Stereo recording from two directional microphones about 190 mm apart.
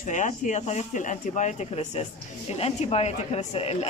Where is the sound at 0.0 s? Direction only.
40° left (ahead or behind).